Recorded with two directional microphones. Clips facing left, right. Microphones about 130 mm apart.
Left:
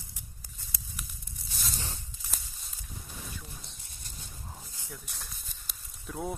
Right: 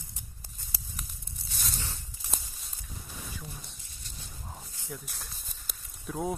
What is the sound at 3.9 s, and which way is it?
Dog, 50° left (ahead or behind).